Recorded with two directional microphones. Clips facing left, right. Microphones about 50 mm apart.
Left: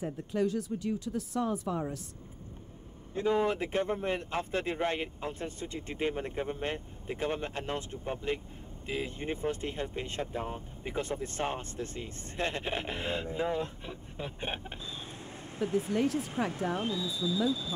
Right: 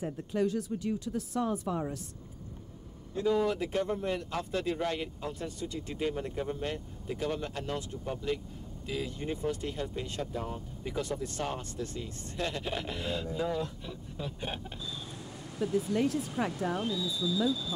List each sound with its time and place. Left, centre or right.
3.2 s speech: left